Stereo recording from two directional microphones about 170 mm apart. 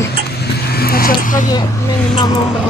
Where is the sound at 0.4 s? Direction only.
65° left (ahead or behind).